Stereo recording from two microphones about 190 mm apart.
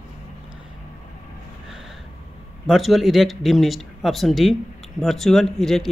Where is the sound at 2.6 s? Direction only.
Centre (ahead or behind).